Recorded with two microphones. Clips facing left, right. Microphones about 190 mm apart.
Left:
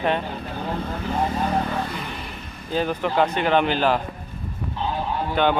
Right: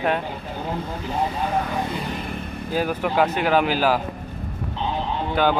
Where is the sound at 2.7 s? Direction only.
5° right (ahead or behind).